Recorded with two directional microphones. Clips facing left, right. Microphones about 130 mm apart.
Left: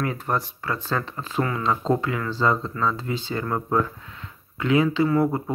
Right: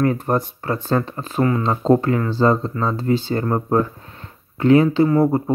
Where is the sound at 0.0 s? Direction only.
45° right (ahead or behind).